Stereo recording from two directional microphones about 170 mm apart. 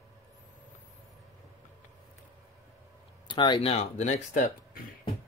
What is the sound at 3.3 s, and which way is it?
Speech, 30° left (ahead or behind).